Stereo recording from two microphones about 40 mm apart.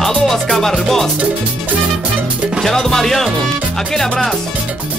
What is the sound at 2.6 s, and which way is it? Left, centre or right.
Music, centre.